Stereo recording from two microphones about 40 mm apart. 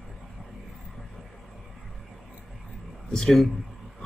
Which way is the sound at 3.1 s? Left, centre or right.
Centre.